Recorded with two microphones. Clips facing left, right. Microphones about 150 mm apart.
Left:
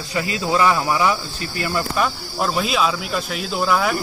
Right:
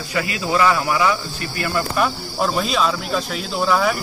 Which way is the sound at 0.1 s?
20° left (ahead or behind).